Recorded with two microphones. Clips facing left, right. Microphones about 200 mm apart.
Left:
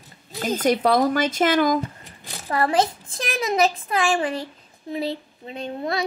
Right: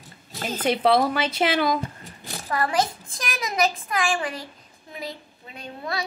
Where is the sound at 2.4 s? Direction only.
30° left (ahead or behind).